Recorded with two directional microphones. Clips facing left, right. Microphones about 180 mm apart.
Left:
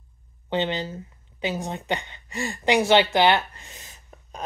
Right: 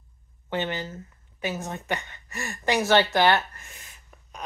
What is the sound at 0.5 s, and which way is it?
A woman's voice, 20° left (ahead or behind).